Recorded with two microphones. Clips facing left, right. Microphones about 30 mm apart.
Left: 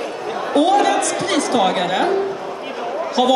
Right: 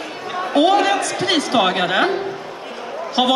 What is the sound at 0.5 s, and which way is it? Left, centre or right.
A man's voice, right.